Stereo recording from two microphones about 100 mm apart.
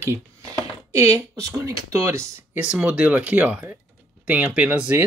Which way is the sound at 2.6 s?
10° right (ahead or behind).